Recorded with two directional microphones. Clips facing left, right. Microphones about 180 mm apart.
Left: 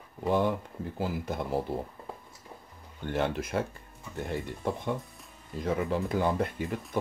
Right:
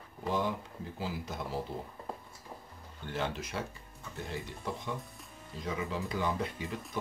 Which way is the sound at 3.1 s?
55° left (ahead or behind).